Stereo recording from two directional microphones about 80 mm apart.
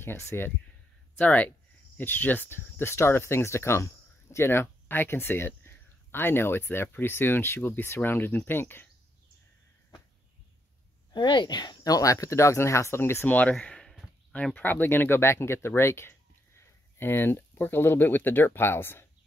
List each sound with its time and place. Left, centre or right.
0.0 s speech: left
1.1 s speech: left
11.1 s speech: left
13.3 s speech: centre